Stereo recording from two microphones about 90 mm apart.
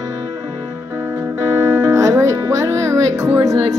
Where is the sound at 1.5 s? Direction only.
40° right (ahead or behind).